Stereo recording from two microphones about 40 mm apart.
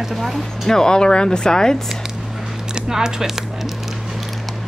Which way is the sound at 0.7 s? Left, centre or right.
Centre.